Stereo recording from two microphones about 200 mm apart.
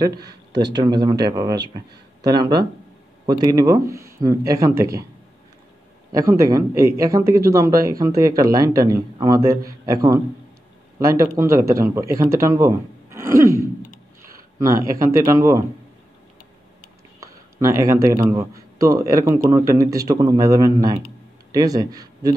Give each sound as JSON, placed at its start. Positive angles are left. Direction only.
{"t": 0.3, "sound": "speech", "side_deg": -60}
{"t": 0.7, "sound": "speech", "side_deg": -20}
{"t": 6.1, "sound": "speech", "side_deg": -15}
{"t": 17.2, "sound": "speech", "side_deg": -15}